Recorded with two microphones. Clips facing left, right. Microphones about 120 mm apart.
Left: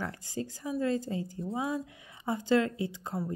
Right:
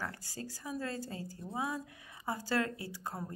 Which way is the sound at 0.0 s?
20° left (ahead or behind).